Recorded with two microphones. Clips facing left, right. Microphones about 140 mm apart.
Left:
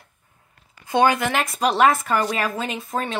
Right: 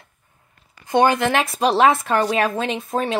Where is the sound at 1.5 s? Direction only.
25° right (ahead or behind).